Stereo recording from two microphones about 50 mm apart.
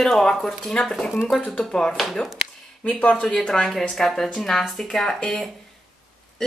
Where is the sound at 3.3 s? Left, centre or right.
Centre.